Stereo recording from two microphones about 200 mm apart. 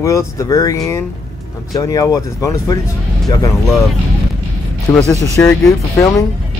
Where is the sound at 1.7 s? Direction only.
15° left (ahead or behind).